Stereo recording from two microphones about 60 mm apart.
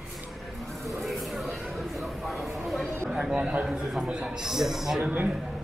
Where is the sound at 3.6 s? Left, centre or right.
Centre.